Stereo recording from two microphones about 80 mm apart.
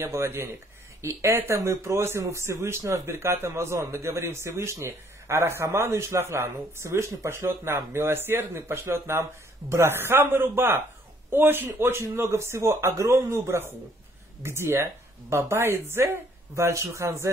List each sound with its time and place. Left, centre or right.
0.0 s speech: right